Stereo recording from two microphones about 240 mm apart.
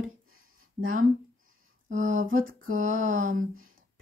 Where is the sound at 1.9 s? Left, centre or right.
Right.